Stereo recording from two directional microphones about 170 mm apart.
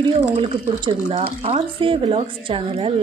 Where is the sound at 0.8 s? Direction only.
35° right (ahead or behind).